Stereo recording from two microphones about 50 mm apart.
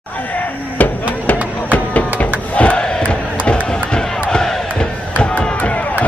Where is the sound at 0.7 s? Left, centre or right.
Left.